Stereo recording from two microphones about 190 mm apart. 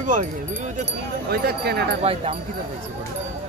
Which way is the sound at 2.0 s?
30° right (ahead or behind).